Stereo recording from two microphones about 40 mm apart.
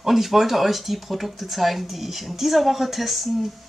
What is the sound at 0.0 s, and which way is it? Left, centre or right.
Speech, centre.